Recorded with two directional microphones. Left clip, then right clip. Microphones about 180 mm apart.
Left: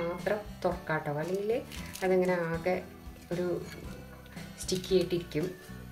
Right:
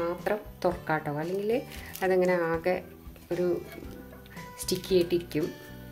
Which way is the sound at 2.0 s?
50° right (ahead or behind).